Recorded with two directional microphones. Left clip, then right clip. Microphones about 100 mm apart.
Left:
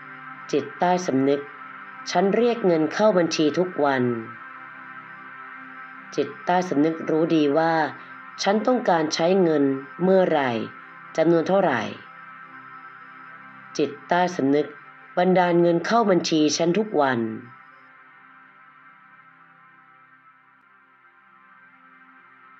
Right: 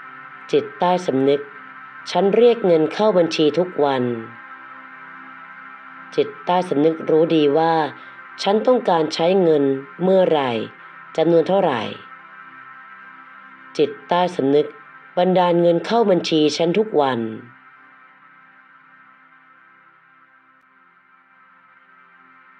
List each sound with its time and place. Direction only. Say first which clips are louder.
0.5 s speech: right 4 dB; 65° right (ahead or behind)
2.2 s speech: right 8 dB; 65° right (ahead or behind)
6.1 s speech: right 4 dB; 65° right (ahead or behind)
13.7 s speech: right 4 dB; 65° right (ahead or behind)